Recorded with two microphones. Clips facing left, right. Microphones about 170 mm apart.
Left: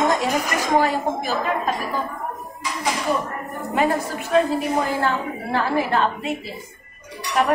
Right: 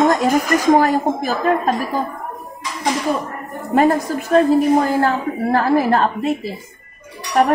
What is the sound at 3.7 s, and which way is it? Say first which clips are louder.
A woman's voice: right 6 dB; 45° right (ahead or behind).